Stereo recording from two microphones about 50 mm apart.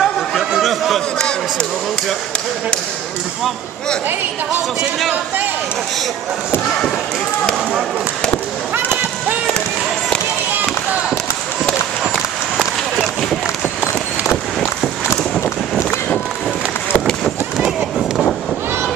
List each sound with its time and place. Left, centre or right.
0.0 s chatter: centre
8.7 s a sound: right
17.6 s run: centre